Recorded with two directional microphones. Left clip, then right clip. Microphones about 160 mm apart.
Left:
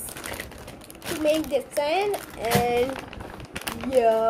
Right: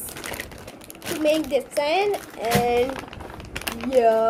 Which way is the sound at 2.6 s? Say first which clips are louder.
Right 2 dB; 10° left (ahead or behind).